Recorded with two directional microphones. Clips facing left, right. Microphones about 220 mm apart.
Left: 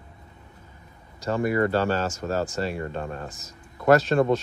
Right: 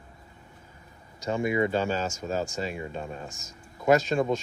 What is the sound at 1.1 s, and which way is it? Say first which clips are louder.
Speech: left 2 dB; centre (ahead or behind).